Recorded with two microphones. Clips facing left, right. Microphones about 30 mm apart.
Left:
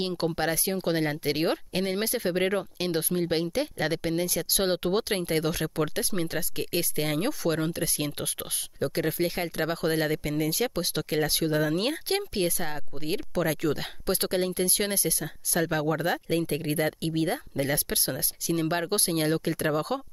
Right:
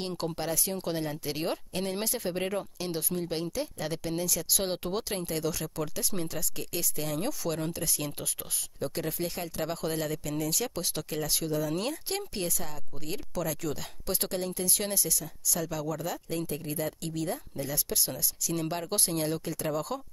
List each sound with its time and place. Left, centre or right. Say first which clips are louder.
0.4 s speech: left 5 dB; left
4.9 s speech: left 6 dB; left
7.2 s speech: left 5 dB; left